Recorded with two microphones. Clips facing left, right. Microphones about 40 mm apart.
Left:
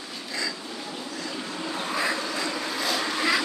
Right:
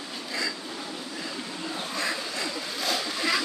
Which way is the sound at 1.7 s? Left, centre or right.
Left.